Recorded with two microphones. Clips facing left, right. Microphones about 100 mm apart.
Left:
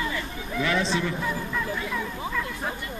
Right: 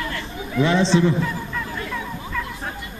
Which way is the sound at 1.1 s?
5° left (ahead or behind).